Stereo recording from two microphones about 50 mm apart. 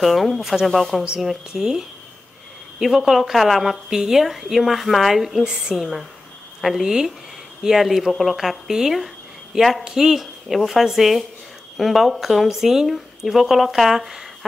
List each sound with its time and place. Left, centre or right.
0.0 s speech: centre
1.2 s speech: centre
5.4 s a woman's voice: centre
5.8 s speech: centre